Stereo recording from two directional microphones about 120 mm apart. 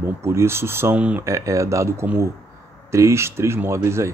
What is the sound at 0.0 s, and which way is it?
Speech, 25° right (ahead or behind).